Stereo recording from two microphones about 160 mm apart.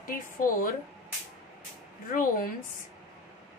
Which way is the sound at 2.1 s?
60° left (ahead or behind).